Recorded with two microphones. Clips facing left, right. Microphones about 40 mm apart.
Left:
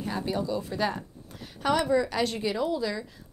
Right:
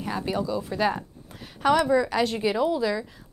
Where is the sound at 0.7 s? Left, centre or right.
Centre.